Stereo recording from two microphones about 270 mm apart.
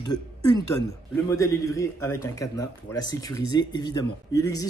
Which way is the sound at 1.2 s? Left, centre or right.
Centre.